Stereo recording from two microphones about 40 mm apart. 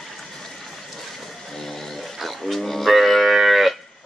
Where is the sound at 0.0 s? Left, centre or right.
Centre.